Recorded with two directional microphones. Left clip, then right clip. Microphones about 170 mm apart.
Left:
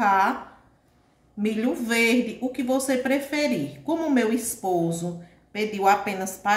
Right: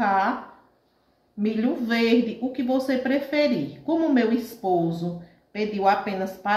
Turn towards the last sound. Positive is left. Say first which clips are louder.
# left 1 dB
turn(degrees=30)  # may be behind; listen again after turning